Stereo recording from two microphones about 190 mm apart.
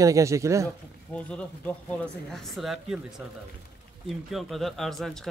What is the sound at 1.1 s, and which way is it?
Speech, 5° left (ahead or behind).